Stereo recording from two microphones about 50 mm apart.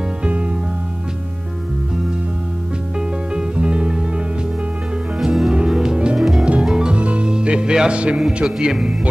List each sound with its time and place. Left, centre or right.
0.2 s music: right
3.3 s music: right
5.2 s music: centre
6.1 s music: centre
6.6 s music: centre
8.2 s a man's voice: centre